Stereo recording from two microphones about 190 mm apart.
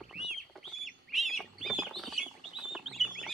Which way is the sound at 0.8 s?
Centre (ahead or behind).